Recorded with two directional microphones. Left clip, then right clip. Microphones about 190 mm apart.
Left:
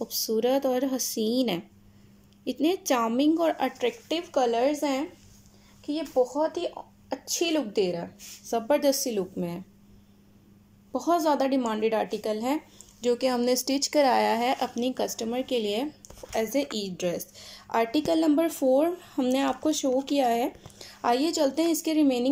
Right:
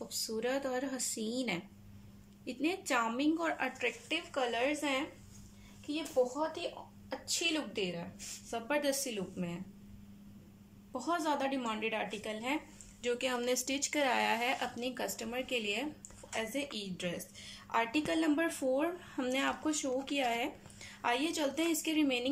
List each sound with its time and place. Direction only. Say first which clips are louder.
0.2 s a woman's voice: left 11 dB; 30° left (ahead or behind)
10.9 s a woman's voice: left 10 dB; 35° left (ahead or behind)